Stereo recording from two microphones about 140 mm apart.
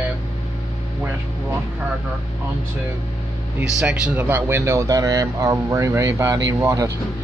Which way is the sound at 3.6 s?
5° right (ahead or behind).